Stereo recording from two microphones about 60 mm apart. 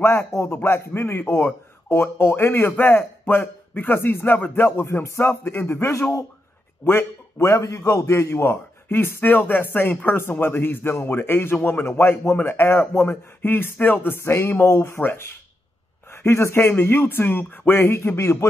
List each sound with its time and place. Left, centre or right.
0.0 s speech: left
0.6 s speech: left
7.4 s speech: left
15.0 s speech: left